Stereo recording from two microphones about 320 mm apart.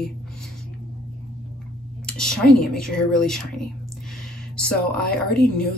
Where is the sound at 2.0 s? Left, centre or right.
Centre.